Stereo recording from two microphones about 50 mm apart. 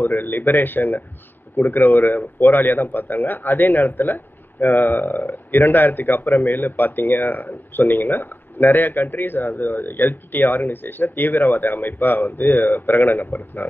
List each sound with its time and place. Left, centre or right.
0.0 s speech: left